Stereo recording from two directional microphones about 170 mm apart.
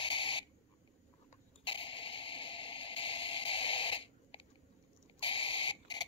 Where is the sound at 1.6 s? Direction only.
30° left (ahead or behind).